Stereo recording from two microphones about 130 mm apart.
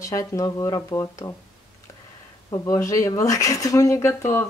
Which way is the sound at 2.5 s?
25° left (ahead or behind).